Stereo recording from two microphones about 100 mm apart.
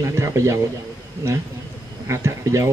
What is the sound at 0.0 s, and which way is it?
Speech, 30° right (ahead or behind).